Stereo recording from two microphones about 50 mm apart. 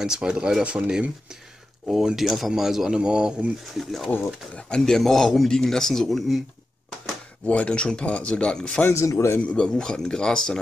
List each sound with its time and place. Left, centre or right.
0.0 s speech: centre
1.9 s speech: centre
3.7 s speech: centre
4.6 s speech: centre
7.4 s speech: left
8.9 s speech: left
9.4 s speech: left